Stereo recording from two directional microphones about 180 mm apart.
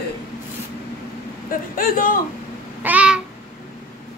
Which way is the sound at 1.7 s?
50° left (ahead or behind).